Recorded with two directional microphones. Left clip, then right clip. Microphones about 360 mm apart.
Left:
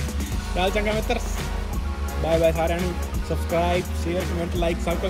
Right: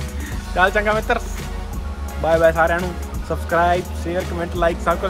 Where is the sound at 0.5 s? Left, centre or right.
Centre.